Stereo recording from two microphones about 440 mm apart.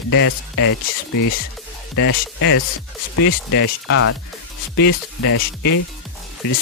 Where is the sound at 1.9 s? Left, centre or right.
Left.